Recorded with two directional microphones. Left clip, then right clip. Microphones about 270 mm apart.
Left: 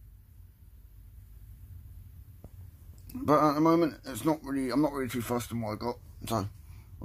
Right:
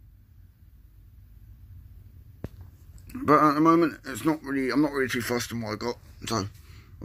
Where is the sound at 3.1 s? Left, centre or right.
Centre.